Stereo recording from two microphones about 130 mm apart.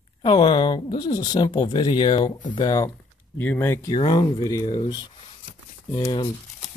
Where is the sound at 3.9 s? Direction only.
35° left (ahead or behind).